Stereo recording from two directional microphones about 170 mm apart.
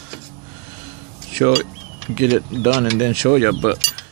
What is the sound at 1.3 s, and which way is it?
Speech, 55° right (ahead or behind).